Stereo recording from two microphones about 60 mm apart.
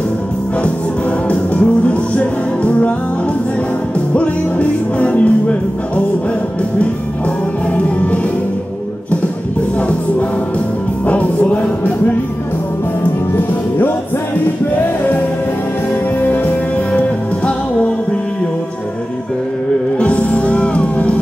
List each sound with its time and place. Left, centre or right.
1.3 s music: left
4.1 s music: left
7.7 s music: left
11.1 s music: left
16.2 s music: left
20.0 s music: left